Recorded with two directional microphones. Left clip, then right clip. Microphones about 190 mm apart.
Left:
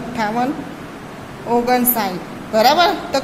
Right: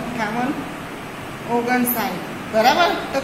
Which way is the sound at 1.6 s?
60° left (ahead or behind).